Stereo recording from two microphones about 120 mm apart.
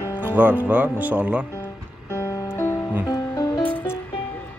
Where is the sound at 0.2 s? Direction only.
15° right (ahead or behind).